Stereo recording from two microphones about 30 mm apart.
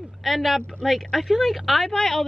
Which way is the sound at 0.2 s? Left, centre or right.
Centre.